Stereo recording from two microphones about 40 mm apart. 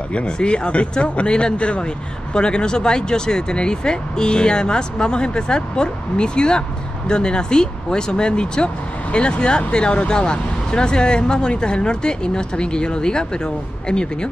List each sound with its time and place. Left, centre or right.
0.1 s speech: left